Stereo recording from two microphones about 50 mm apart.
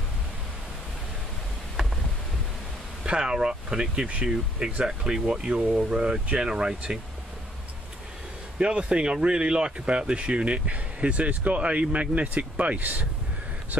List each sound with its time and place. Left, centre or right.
3.1 s speech: centre
8.5 s speech: right